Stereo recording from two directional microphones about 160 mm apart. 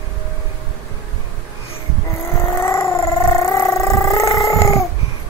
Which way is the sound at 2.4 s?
15° left (ahead or behind).